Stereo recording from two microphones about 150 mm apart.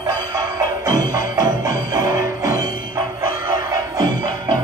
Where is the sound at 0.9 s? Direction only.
70° left (ahead or behind).